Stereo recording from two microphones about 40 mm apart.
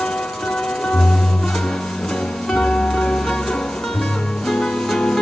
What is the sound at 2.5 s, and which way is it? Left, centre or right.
Music, centre.